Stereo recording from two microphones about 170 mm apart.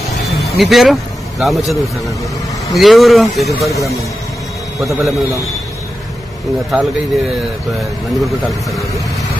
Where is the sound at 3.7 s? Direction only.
20° left (ahead or behind).